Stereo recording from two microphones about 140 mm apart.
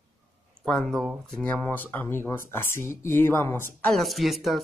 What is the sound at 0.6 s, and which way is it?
Speech, 5° left (ahead or behind).